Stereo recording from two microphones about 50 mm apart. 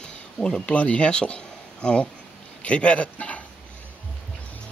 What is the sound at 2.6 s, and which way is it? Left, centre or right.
Speech, left.